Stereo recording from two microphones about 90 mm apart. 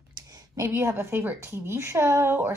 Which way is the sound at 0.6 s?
30° right (ahead or behind).